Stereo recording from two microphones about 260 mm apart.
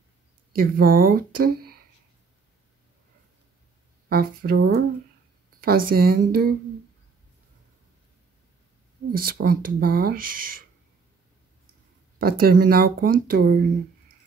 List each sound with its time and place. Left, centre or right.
0.6 s speech: right
4.1 s speech: right
9.4 s speech: right
12.2 s speech: right